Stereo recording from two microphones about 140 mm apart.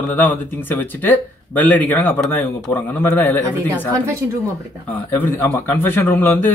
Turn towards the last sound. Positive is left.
turn(degrees=15)  # may be behind; listen again after turning